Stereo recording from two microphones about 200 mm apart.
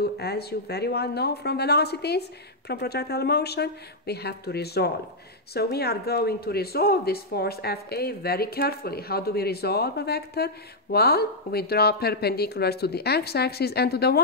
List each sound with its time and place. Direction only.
0.0 s speech: 50° left (ahead or behind)